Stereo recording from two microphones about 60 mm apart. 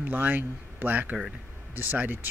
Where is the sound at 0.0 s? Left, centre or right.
Right.